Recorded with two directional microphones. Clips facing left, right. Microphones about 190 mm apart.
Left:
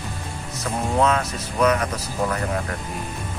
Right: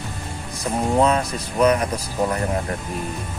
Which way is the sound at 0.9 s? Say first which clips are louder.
Right 2 dB; 30° right (ahead or behind).